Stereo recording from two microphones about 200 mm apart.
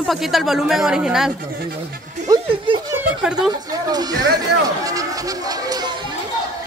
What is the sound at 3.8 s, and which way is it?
Speech, 20° right (ahead or behind).